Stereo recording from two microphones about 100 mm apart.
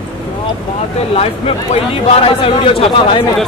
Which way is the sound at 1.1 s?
80° left.